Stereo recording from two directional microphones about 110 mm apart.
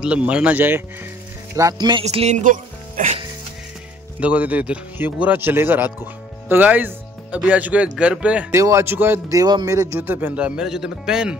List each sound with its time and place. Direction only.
0.0 s a man's voice: 10° right (ahead or behind)
1.5 s speech: 30° right (ahead or behind)
2.0 s speech: 80° right
4.2 s a man's voice: 15° right (ahead or behind)
8.5 s speech: 25° right (ahead or behind)
9.3 s a man's voice: 35° right (ahead or behind); by 11.3 s 5° right (ahead or behind)